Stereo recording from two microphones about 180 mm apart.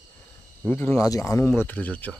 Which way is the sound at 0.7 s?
15° left (ahead or behind).